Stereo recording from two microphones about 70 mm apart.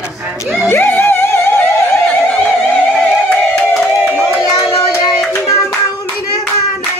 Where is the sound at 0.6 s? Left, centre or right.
Left.